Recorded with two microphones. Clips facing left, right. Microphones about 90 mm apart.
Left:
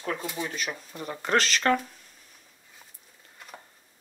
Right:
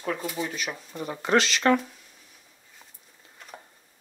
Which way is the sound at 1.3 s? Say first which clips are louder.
Right 2 dB; 40° left (ahead or behind).